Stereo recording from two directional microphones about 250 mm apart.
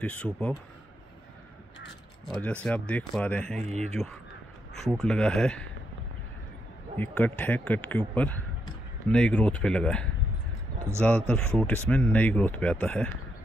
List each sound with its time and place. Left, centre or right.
0.0 s speech: centre
2.2 s speech: centre
3.6 s speech: right
3.9 s speech: centre
7.0 s a man's voice: centre